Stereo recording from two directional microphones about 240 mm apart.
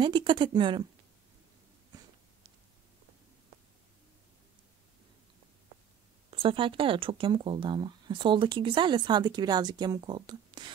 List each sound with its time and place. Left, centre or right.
0.0 s speech: centre
6.3 s speech: right